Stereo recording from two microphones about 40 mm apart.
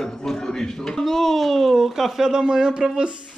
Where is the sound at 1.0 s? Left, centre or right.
Centre.